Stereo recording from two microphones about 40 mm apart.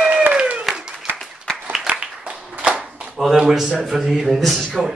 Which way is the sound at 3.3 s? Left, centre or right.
Centre.